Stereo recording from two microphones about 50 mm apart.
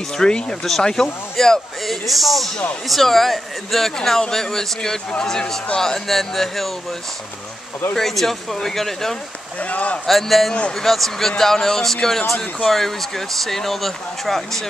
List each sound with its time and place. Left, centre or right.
0.1 s speech: centre
7.9 s speech: centre
9.6 s speech: left
10.0 s speech: centre